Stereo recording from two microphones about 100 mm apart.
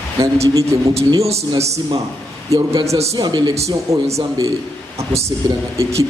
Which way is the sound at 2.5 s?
30° right (ahead or behind).